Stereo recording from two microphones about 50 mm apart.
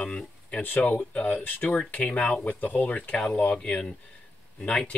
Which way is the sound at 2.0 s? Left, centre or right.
Left.